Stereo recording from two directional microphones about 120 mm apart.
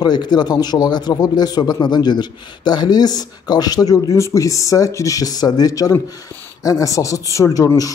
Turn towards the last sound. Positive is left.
turn(degrees=30)  # may be behind; listen again after turning